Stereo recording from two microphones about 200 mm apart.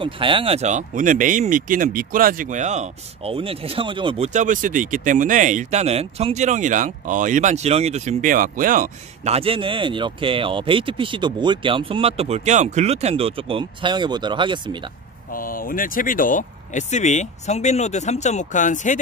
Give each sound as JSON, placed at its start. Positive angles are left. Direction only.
{"t": 0.0, "sound": "speech", "side_deg": -25}
{"t": 15.3, "sound": "speech", "side_deg": 45}